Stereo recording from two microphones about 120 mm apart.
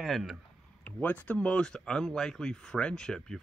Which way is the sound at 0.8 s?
15° left (ahead or behind).